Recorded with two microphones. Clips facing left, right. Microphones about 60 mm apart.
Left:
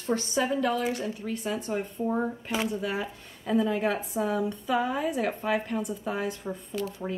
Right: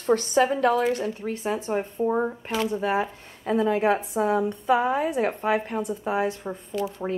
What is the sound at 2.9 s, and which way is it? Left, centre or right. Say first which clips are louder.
Speech: right 7 dB; right.